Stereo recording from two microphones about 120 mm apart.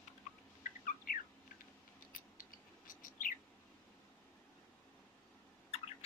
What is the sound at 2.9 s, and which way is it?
Bird, 90° left.